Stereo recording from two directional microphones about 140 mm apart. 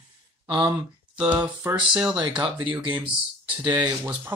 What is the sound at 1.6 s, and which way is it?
Speech, 20° right (ahead or behind).